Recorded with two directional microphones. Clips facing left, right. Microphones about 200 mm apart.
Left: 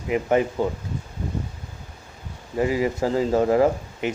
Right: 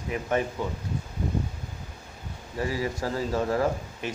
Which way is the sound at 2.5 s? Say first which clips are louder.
Left 7 dB; 20° left (ahead or behind).